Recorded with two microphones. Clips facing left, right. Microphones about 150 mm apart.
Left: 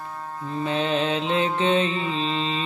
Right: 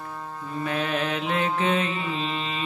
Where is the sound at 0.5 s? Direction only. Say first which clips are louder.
Left 3 dB; 25° left (ahead or behind).